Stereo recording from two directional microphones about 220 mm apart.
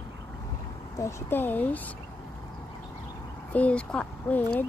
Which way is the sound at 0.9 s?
15° left (ahead or behind).